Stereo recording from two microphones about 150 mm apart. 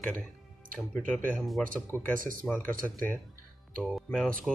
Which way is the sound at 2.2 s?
65° right (ahead or behind).